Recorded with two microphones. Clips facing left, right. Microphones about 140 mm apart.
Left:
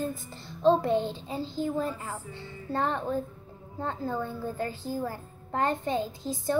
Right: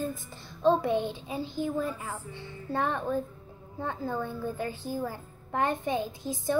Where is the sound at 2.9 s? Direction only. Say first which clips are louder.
Even; 20° left (ahead or behind).